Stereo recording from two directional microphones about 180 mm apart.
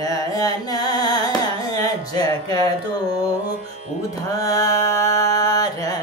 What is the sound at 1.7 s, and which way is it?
Music, 20° left (ahead or behind).